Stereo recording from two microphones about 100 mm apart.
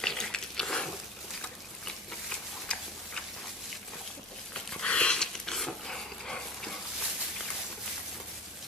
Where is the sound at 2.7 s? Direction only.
10° left (ahead or behind).